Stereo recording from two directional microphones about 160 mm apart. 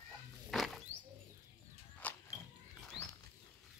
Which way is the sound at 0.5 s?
Centre (ahead or behind).